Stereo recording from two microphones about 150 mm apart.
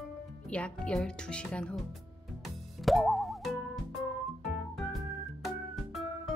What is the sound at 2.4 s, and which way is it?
Music, centre (ahead or behind).